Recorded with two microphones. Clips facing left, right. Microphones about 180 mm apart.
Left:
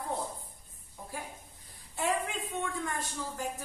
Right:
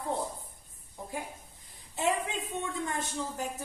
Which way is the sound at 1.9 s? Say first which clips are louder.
Right 2 dB; 20° right (ahead or behind).